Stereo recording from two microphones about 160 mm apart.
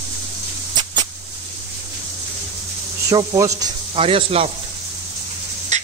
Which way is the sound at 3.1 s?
20° right (ahead or behind).